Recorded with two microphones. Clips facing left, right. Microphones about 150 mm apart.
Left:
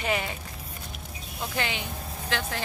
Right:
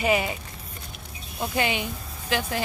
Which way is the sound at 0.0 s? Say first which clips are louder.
Right 5 dB; 10° right (ahead or behind).